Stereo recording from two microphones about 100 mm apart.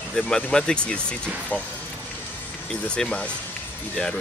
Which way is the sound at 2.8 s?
10° left (ahead or behind).